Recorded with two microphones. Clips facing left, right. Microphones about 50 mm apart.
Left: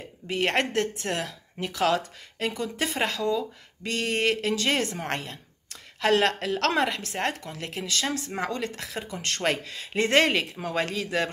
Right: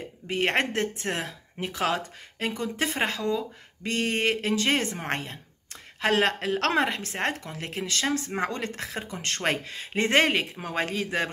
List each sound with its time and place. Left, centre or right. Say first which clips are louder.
0.3 s speech: even; right